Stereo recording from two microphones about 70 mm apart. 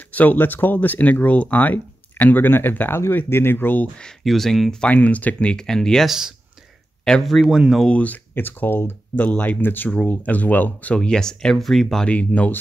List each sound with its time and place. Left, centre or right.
0.0 s speech: left
4.0 s speech: centre
4.9 s speech: left
6.0 s speech: centre
7.1 s speech: centre
7.4 s speech: centre
7.8 s speech: centre
9.8 s speech: centre
11.0 s speech: centre
12.1 s speech: centre